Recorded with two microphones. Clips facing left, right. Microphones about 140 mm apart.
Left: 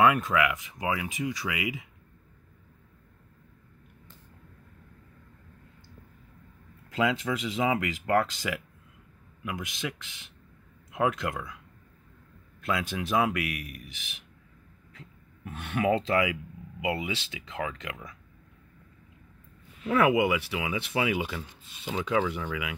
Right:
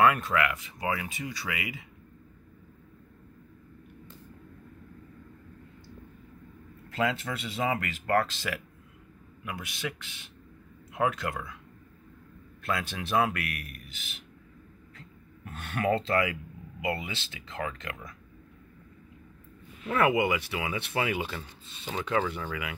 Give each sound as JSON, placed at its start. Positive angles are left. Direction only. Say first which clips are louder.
{"t": 0.0, "sound": "speech", "louder": "left 1 dB", "side_deg": 10}
{"t": 6.9, "sound": "speech", "louder": "left 2 dB", "side_deg": 15}
{"t": 12.6, "sound": "speech", "louder": "left 2 dB", "side_deg": 10}
{"t": 19.9, "sound": "speech", "louder": "left 2 dB", "side_deg": 5}